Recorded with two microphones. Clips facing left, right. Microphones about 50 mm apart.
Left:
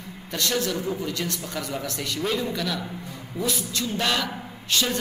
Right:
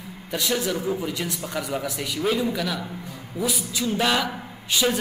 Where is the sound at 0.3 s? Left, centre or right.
Centre.